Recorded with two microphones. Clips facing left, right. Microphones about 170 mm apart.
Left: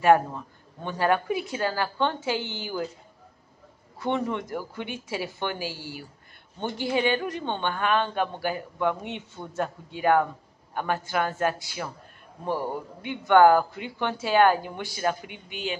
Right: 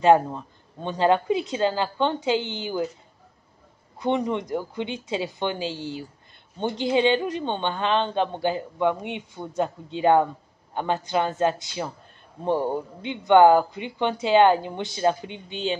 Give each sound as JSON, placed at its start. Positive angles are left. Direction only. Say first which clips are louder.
{"t": 0.0, "sound": "speech", "louder": "right 2 dB", "side_deg": -20}
{"t": 4.0, "sound": "speech", "louder": "right 3 dB", "side_deg": -15}